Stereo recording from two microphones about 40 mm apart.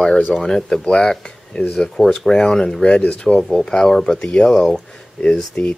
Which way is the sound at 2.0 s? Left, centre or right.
Centre.